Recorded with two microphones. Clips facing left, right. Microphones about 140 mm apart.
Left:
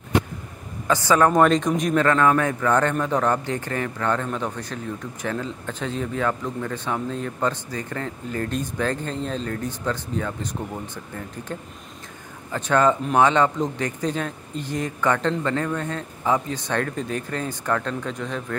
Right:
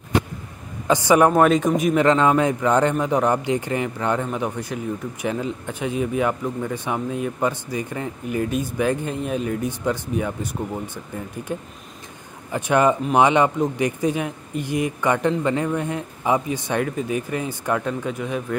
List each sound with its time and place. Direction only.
0.8 s speech: 15° right (ahead or behind)
1.3 s speech: 5° right (ahead or behind)
2.0 s speech: 20° right (ahead or behind)
12.4 s speech: 15° right (ahead or behind)